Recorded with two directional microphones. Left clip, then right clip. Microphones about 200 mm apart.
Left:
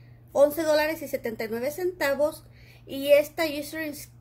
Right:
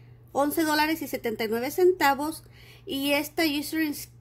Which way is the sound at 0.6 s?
45° right (ahead or behind).